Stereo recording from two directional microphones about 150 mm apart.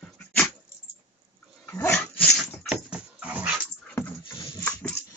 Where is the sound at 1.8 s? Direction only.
10° left (ahead or behind); by 3.6 s 10° right (ahead or behind).